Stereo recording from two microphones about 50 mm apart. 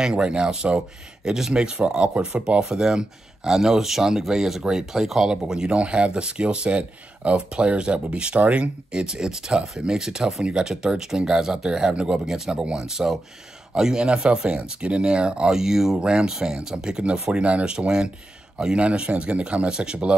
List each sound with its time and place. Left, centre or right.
0.0 s speech: centre
5.5 s speech: centre